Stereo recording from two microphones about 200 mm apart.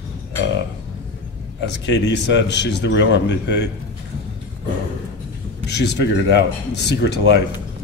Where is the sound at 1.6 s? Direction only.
60° left (ahead or behind).